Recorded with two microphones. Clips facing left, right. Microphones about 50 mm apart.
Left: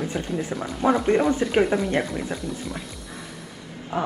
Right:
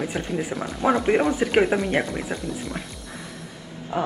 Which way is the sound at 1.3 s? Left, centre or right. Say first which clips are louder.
Right 1 dB; centre.